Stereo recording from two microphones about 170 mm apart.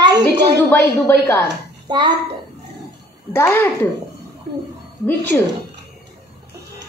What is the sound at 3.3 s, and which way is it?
Speech, 15° left (ahead or behind).